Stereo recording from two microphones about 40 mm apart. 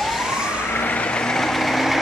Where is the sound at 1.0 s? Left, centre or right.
Left; by 2.0 s centre.